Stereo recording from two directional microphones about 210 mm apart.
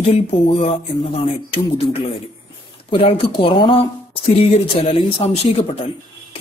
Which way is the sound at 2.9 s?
25° left (ahead or behind).